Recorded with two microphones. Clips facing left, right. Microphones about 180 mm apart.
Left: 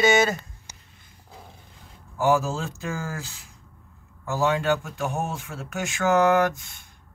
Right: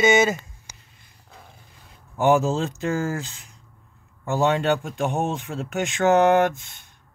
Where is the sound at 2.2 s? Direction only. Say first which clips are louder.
Right 3 dB; 20° right (ahead or behind).